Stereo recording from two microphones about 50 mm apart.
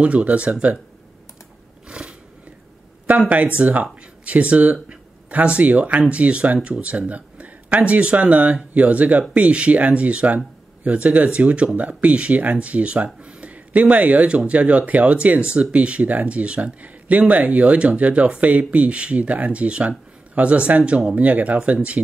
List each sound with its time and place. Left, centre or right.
0.0 s speech: right
1.9 s a sound: centre
3.1 s speech: right